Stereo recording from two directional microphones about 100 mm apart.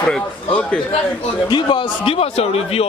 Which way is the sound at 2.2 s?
85° left.